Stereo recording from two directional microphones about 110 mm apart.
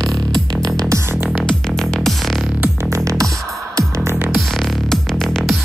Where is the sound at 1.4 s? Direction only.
5° left (ahead or behind).